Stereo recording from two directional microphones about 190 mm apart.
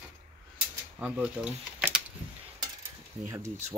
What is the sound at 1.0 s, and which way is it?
Speech, 5° right (ahead or behind).